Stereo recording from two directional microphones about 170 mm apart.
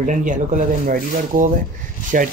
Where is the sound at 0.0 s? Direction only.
50° right (ahead or behind).